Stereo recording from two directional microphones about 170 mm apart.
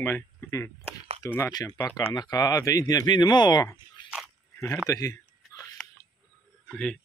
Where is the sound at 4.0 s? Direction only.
25° left (ahead or behind).